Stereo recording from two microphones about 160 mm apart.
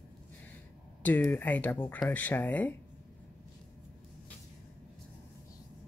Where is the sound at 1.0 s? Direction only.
10° left (ahead or behind).